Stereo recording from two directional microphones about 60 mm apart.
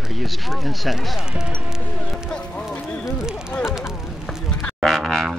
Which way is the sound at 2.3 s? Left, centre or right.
Centre.